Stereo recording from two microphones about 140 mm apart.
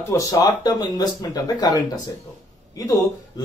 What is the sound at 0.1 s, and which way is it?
Speech, 25° left (ahead or behind).